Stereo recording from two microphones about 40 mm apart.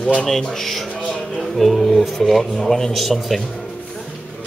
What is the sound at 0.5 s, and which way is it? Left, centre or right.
Speech, centre.